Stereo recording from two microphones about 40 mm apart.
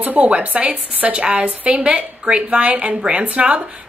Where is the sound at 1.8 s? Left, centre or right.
Right.